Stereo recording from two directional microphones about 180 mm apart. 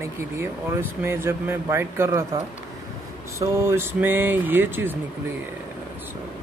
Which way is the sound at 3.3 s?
15° right (ahead or behind).